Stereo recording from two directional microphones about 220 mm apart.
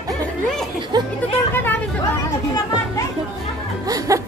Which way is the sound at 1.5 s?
10° left (ahead or behind).